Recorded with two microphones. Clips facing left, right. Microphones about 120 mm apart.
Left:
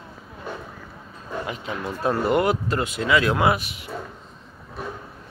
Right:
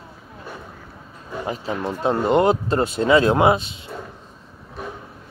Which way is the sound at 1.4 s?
35° right (ahead or behind).